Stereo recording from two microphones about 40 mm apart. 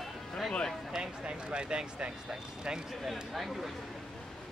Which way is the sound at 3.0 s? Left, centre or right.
Centre.